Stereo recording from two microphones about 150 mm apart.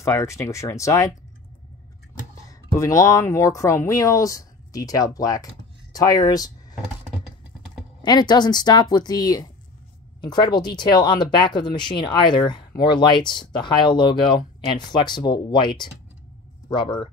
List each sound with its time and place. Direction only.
0.0 s speech: 20° left (ahead or behind)
2.7 s speech: 20° left (ahead or behind)
8.0 s speech: 30° left (ahead or behind)